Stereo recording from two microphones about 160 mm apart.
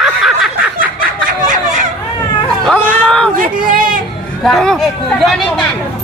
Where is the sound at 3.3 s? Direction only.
60° right (ahead or behind).